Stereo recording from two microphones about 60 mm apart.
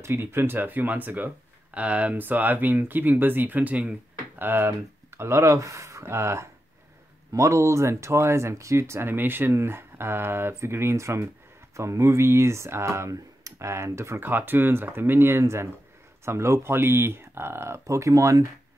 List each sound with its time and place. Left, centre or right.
0.0 s speech: right
4.4 s speech: right
13.1 s speech: right
14.2 s speech: right